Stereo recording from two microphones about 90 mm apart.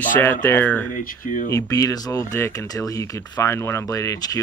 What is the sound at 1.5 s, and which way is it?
Speech, 35° left (ahead or behind).